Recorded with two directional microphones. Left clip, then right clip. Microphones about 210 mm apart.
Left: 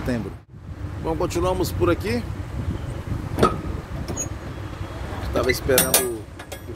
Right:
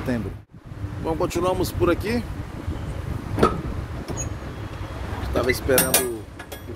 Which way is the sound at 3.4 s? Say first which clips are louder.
Even; 50° left (ahead or behind).